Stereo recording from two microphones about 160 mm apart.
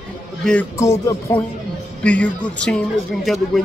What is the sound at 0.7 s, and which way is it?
Speech, 20° left (ahead or behind).